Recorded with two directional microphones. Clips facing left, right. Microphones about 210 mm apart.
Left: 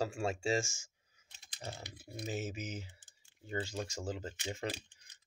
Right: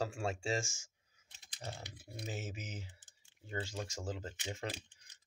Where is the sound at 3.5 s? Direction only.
10° left (ahead or behind).